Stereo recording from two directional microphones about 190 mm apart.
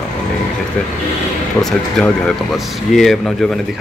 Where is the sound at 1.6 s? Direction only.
Centre (ahead or behind).